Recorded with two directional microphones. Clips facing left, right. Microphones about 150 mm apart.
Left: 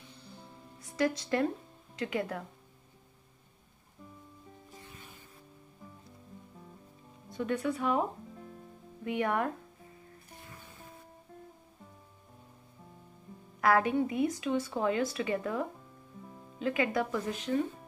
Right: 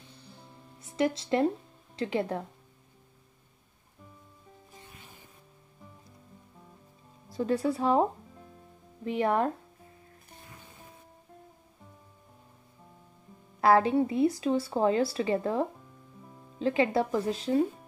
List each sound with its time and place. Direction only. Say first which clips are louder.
0.7 s a woman's voice: right 2 dB; 25° right (ahead or behind)
7.2 s speech: right 4 dB; 35° right (ahead or behind)
13.6 s speech: right 4 dB; 30° right (ahead or behind)